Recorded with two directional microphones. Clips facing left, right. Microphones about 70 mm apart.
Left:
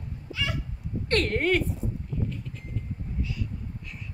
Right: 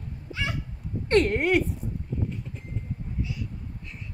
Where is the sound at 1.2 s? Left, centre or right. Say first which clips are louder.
Left 1 dB; centre.